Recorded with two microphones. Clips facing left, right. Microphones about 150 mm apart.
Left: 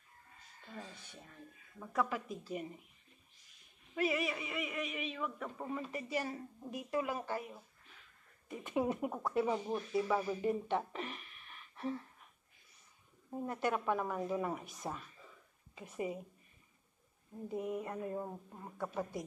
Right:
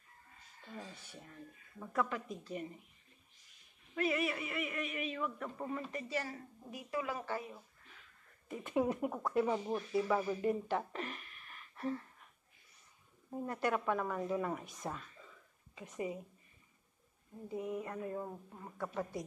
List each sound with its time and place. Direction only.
0.7 s speech: 10° right (ahead or behind); by 2.6 s 5° left (ahead or behind)
3.9 s speech: 5° left (ahead or behind)
6.3 s a woman's voice: 25° left (ahead or behind)
7.1 s a woman's voice: 15° left (ahead or behind)
8.6 s speech: centre (ahead or behind)
13.3 s speech: centre (ahead or behind)
17.5 s a woman's voice: 20° left (ahead or behind)